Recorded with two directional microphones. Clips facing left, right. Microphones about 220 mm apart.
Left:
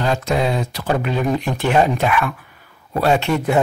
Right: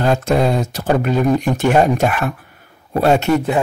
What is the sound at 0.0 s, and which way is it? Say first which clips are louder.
Speech: right 4 dB; 45° right (ahead or behind).